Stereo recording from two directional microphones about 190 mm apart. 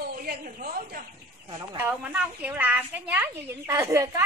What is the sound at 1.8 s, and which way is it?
Speech, 10° right (ahead or behind).